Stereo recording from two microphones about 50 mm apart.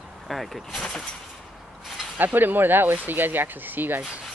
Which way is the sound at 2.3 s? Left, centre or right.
Right.